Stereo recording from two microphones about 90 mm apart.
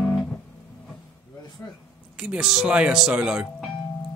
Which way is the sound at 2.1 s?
10° right (ahead or behind).